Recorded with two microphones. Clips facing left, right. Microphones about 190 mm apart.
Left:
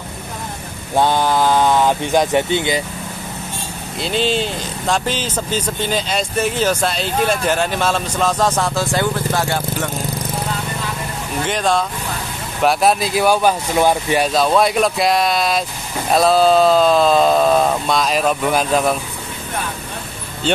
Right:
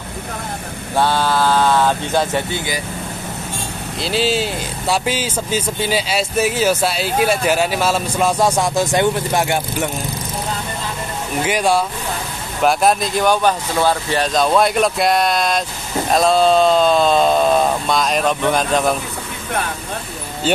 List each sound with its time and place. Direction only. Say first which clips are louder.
0.9 s speech: left 1 dB; 15° left (ahead or behind)
4.0 s speech: even; 5° right (ahead or behind)
11.4 s speech: right 1 dB; 10° right (ahead or behind)
12.6 s speech: even; 5° left (ahead or behind)